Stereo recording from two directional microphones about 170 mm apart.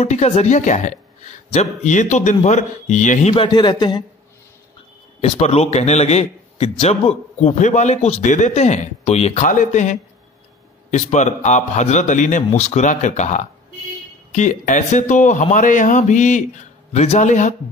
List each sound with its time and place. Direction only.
0.0 s speech: 40° left (ahead or behind)
3.3 s a man's voice: 25° left (ahead or behind)
5.2 s a man's voice: 40° left (ahead or behind)